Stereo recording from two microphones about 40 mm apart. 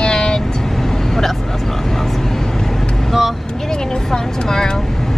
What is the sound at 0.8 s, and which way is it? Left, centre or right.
Vehicle, centre.